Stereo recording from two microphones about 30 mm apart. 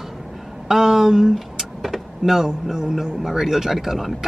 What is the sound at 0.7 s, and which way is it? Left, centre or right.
Speech, centre.